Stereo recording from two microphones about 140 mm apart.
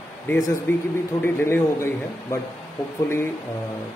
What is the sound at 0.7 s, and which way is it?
A man's voice, 15° left (ahead or behind).